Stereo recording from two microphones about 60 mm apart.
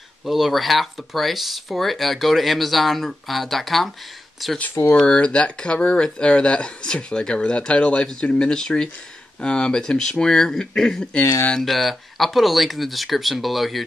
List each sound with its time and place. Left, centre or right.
0.2 s speech: centre
4.9 s speech: centre